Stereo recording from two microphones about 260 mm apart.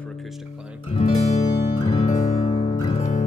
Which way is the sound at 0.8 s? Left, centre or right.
Left.